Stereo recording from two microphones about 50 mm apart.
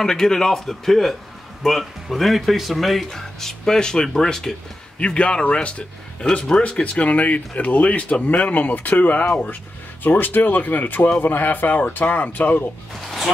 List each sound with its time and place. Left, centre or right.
0.0 s speech: centre
4.9 s speech: left